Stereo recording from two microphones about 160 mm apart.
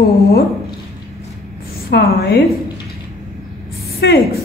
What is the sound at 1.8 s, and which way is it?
Speech, 85° left.